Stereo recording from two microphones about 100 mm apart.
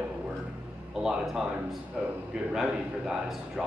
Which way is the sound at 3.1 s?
5° right (ahead or behind).